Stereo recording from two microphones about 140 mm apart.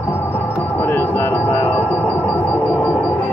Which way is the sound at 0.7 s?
15° left (ahead or behind).